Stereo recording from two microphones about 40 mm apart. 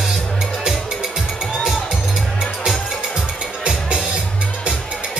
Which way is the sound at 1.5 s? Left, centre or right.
Centre.